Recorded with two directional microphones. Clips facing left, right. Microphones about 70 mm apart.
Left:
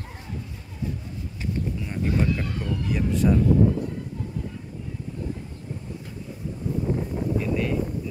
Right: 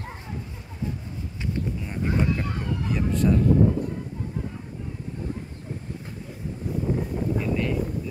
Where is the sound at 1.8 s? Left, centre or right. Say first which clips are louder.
Left 1 dB; centre.